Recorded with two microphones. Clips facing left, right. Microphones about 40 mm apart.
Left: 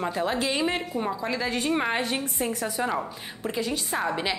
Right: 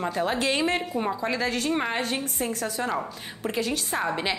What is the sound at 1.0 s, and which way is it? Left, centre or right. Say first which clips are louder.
Speech: right 1 dB; centre.